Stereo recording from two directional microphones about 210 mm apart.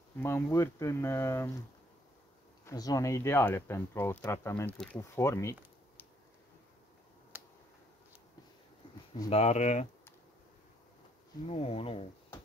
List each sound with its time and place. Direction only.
0.2 s speech: 10° left (ahead or behind)
2.6 s speech: 15° left (ahead or behind)
7.3 s finger snapping: 10° right (ahead or behind)
9.3 s speech: 30° left (ahead or behind)
11.4 s speech: 30° left (ahead or behind)